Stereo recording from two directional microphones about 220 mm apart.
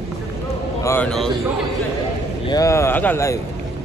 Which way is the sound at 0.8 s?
5° left (ahead or behind).